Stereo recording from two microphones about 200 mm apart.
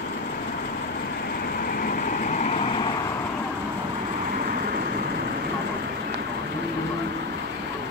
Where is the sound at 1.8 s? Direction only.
45° left (ahead or behind); by 2.9 s 25° left (ahead or behind).